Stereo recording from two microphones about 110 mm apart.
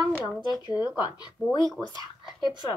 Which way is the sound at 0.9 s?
40° left (ahead or behind).